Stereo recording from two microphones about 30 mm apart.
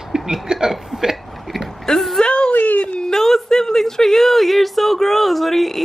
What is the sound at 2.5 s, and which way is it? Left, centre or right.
Whimper, left.